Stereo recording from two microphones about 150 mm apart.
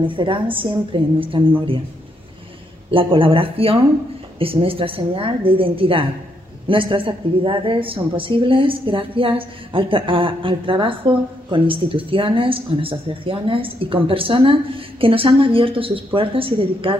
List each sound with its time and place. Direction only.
0.0 s a woman's voice: 35° right (ahead or behind)
2.9 s a woman's voice: 35° right (ahead or behind)